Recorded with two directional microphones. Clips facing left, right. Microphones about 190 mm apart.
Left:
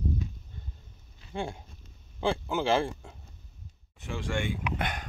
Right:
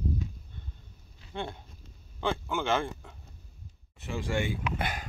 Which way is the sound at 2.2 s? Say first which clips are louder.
Left 3 dB; 35° left (ahead or behind).